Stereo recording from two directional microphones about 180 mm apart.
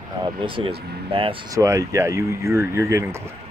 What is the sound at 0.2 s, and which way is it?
Speech, 30° right (ahead or behind).